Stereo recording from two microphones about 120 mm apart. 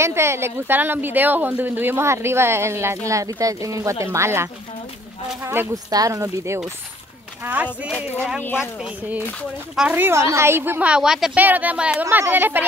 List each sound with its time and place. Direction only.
0.0 s a woman's voice: 20° right (ahead or behind)
5.9 s a woman's voice: 30° right (ahead or behind)
7.4 s a woman's voice: 10° right (ahead or behind)
8.4 s speech: 15° left (ahead or behind)
8.7 s a woman's voice: 5° right (ahead or behind)